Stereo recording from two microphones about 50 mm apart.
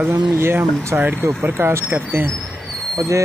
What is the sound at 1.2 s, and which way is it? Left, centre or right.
Speech, right.